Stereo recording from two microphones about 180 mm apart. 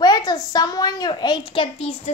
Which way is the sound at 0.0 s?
20° left (ahead or behind).